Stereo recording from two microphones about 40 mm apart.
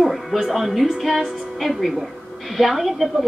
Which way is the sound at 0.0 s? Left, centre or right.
Centre.